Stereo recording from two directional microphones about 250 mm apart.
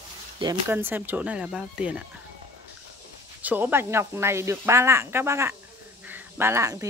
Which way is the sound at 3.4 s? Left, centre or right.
Centre.